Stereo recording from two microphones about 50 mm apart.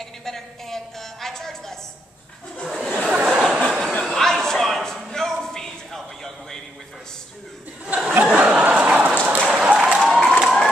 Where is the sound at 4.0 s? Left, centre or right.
Centre.